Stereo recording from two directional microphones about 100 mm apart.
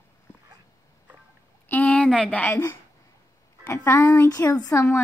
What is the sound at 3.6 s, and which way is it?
Speech, 30° left (ahead or behind).